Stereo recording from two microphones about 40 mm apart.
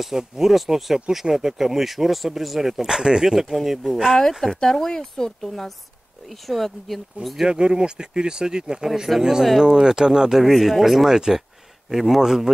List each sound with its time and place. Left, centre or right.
0.0 s speech: centre
2.8 s speech: centre
7.4 s speech: right; by 9.7 s centre
9.7 s speech: centre
11.1 s speech: centre
11.9 s speech: centre